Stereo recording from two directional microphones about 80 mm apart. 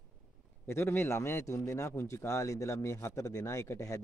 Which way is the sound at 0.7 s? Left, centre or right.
Left.